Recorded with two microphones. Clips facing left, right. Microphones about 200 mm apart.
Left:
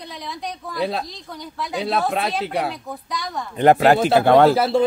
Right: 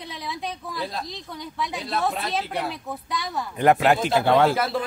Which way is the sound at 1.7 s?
70° left (ahead or behind).